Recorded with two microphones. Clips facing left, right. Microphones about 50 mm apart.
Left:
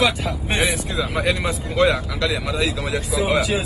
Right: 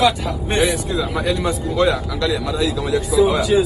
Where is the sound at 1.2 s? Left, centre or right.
Left.